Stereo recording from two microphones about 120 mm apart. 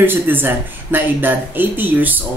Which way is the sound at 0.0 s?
15° right (ahead or behind).